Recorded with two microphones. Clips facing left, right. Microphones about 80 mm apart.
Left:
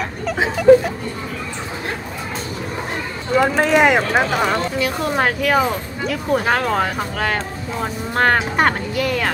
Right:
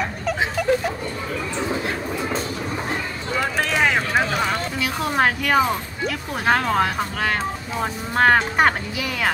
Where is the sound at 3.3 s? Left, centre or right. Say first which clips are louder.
Left 8 dB; centre.